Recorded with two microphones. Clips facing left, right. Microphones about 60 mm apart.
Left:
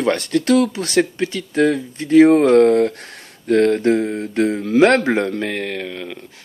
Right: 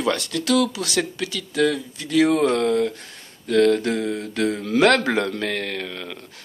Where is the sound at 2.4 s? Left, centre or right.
Left.